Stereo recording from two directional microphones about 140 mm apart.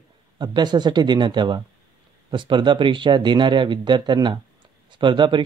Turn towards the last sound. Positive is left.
turn(degrees=-35)  # may be behind; listen again after turning